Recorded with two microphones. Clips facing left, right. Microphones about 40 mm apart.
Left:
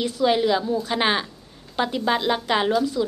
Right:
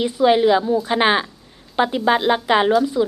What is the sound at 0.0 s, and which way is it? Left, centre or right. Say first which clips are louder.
A woman's voice: right 5 dB; centre.